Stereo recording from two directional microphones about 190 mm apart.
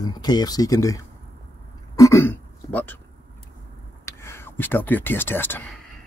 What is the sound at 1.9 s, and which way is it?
Throat clearing, 15° left (ahead or behind).